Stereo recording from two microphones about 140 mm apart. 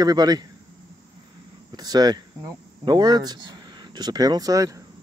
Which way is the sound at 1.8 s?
30° right (ahead or behind).